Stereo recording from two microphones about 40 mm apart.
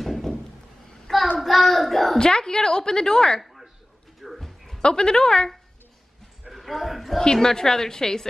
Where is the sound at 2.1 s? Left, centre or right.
Centre.